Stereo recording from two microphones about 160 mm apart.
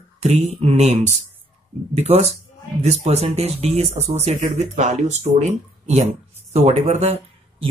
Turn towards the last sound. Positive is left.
turn(degrees=-40)  # may be behind; listen again after turning